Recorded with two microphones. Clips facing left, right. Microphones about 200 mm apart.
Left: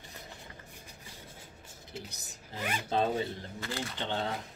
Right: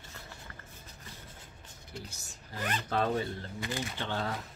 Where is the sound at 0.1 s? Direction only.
15° left (ahead or behind).